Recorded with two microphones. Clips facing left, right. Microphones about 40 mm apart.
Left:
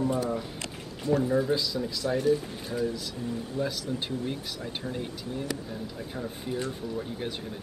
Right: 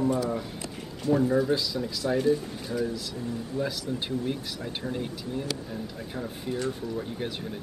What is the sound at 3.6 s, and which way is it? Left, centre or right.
Speech, right.